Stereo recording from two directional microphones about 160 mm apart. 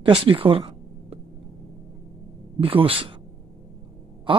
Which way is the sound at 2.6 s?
35° right (ahead or behind).